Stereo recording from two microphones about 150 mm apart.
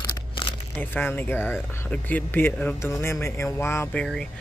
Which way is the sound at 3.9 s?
5° left (ahead or behind).